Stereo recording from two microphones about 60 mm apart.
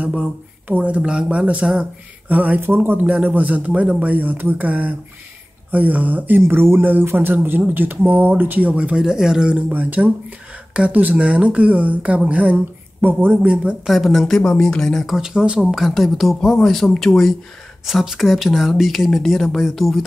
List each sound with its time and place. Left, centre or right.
0.0 s speech: right
2.6 s speech: right
3.1 s speech: right
9.7 s speech: right
13.8 s speech: centre
15.1 s speech: centre
15.7 s speech: centre